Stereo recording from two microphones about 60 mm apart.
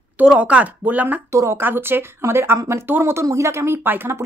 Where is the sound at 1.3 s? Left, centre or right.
Right.